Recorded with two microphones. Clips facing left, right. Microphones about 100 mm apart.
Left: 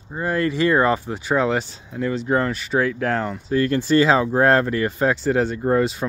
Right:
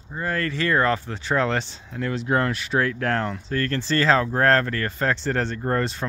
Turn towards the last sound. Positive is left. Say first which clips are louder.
# left 5 dB
turn(degrees=5)  # may be behind; listen again after turning